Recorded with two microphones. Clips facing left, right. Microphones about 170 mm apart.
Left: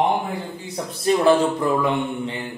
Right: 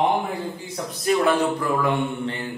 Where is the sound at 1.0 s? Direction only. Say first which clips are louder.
Left 3 dB; 30° left (ahead or behind).